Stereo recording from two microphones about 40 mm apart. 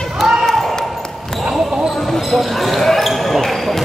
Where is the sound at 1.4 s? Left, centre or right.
Centre.